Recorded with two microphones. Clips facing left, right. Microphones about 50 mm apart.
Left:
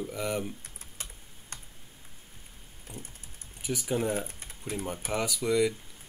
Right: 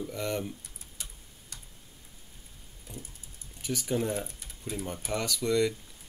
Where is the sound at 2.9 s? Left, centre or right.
Left.